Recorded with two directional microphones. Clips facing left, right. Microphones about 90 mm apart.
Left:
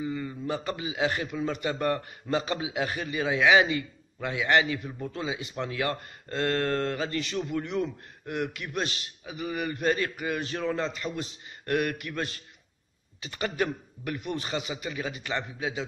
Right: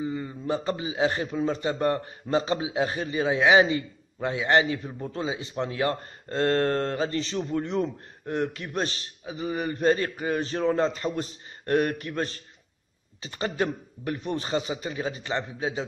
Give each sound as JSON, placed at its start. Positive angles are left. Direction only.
{"t": 0.0, "sound": "a man's voice", "side_deg": -25}